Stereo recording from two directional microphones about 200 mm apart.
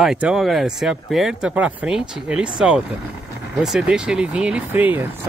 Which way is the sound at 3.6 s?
5° right (ahead or behind).